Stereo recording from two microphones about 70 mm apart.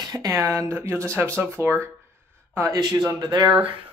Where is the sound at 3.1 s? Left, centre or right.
Right.